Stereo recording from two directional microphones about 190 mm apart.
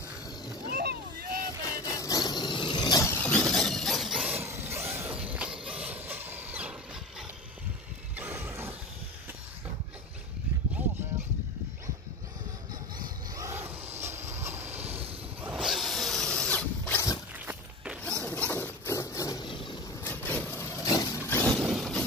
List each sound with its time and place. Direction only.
0.7 s vehicle: 50° right (ahead or behind)
1.8 s vehicle: 15° left (ahead or behind); by 6.7 s 10° right (ahead or behind)
8.2 s a sound: 10° right (ahead or behind)
13.4 s vehicle: 15° right (ahead or behind)
14.0 s train: 15° right (ahead or behind)
15.4 s drill: centre (ahead or behind)
18.2 s a sound: 10° left (ahead or behind); by 19.8 s 25° left (ahead or behind)
20.0 s vehicle: 10° left (ahead or behind)